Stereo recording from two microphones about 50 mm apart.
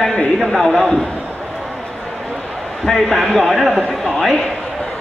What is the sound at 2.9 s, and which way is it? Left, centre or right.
A man's voice, centre.